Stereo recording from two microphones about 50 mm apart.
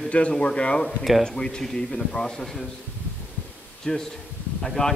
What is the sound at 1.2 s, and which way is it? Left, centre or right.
A man's voice, centre.